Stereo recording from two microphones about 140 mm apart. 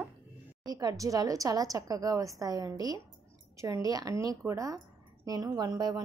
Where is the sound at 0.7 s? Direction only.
25° right (ahead or behind).